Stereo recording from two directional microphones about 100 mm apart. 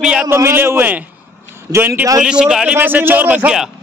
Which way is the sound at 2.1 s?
5° right (ahead or behind).